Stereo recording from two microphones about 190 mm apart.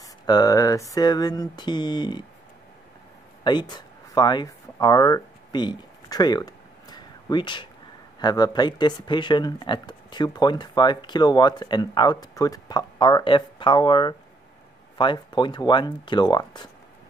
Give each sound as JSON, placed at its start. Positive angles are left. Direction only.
{"t": 0.0, "sound": "speech", "side_deg": 20}
{"t": 3.4, "sound": "a sound", "side_deg": 25}
{"t": 8.2, "sound": "speech", "side_deg": 20}